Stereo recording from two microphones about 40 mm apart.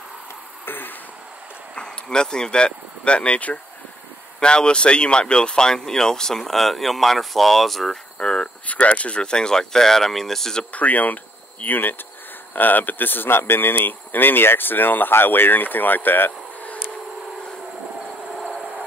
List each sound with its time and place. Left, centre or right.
0.7 s a sound: left
1.8 s speech: centre
7.9 s speech: centre
8.6 s speech: left
9.2 s speech: centre
10.7 s speech: left